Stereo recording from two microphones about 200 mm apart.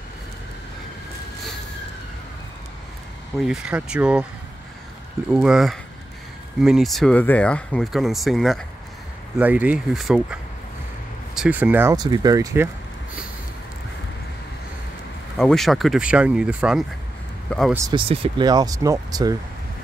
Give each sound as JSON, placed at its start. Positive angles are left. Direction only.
{"t": 3.3, "sound": "speech", "side_deg": -5}
{"t": 5.3, "sound": "speech", "side_deg": -5}
{"t": 15.3, "sound": "speech", "side_deg": 0}
{"t": 17.7, "sound": "speech", "side_deg": -20}